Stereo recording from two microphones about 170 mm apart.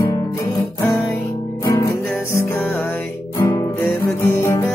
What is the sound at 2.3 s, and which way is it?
Music, 15° left (ahead or behind).